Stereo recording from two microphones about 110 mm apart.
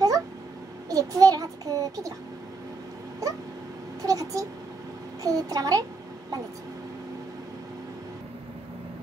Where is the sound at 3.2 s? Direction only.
30° right (ahead or behind).